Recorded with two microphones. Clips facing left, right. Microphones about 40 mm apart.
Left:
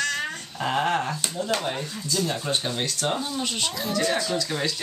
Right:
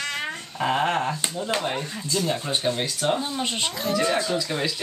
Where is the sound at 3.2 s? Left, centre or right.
Right.